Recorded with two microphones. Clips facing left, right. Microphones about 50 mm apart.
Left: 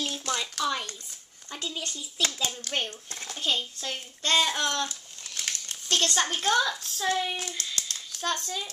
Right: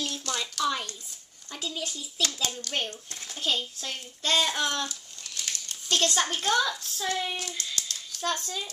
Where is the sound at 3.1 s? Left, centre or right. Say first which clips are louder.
Left 3 dB; left.